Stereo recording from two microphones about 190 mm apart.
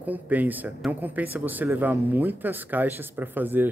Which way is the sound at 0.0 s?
10° right (ahead or behind).